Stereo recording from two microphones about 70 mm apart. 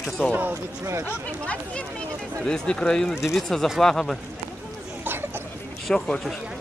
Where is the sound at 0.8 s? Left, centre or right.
Right.